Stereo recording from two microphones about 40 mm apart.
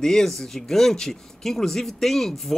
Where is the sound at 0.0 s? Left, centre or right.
Centre.